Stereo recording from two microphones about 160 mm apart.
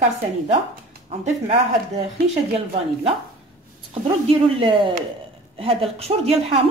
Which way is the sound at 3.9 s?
35° right (ahead or behind).